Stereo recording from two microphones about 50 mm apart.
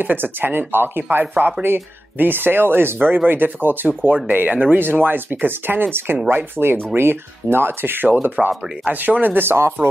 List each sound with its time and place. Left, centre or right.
0.0 s speech: right